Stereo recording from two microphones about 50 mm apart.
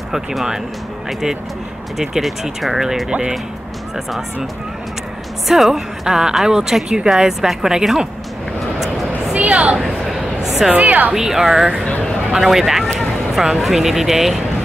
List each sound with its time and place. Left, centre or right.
0.1 s speech: centre
2.0 s speech: centre
3.1 s a woman's voice: centre
3.9 s speech: centre
5.5 s speech: centre
9.3 s a sound: right
9.8 s a sound: centre
10.7 s a woman's voice: right
11.1 s speech: centre